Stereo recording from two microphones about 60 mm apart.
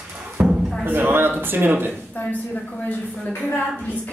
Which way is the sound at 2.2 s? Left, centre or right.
Left.